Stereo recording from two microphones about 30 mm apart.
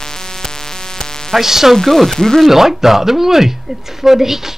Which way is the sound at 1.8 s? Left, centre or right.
Centre.